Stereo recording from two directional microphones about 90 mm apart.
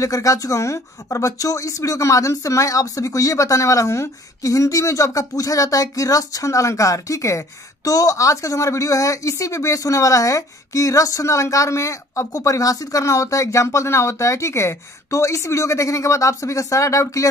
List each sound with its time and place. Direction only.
0.0 s speech: 40° left (ahead or behind)